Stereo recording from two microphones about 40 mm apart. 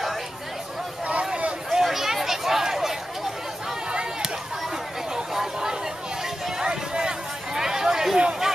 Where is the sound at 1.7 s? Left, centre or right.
Centre.